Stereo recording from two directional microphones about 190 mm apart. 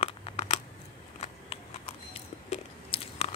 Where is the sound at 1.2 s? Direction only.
30° left (ahead or behind).